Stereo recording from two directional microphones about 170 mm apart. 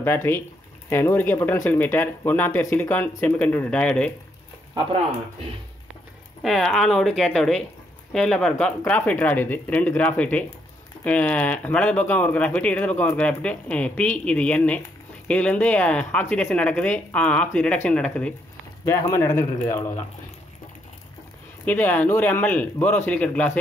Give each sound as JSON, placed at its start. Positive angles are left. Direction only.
{"t": 0.0, "sound": "speech", "side_deg": 10}
{"t": 6.4, "sound": "speech", "side_deg": 0}
{"t": 21.6, "sound": "speech", "side_deg": 10}